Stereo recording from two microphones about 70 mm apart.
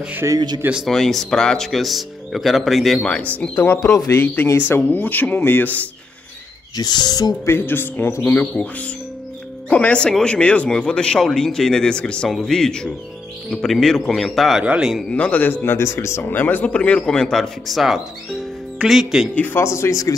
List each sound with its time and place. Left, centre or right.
0.2 s speech: right
0.8 s speech: centre
3.0 s speech: centre
3.9 s a man's voice: left
4.5 s speech: left
6.8 s speech: left
7.4 s speech: left
8.6 s speech: centre
9.7 s speech: centre
14.6 s speech: centre
15.0 s speech: centre; by 16.3 s left
16.3 s speech: left; by 19.2 s centre
19.3 s speech: left